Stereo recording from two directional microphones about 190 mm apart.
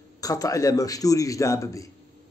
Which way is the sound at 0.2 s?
20° left (ahead or behind).